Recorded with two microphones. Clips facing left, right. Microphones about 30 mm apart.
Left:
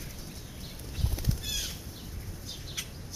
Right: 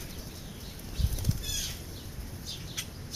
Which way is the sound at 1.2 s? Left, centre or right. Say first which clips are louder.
Left 1 dB; centre.